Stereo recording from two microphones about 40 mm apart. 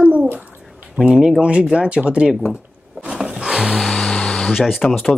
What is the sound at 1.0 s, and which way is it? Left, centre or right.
Speech, centre.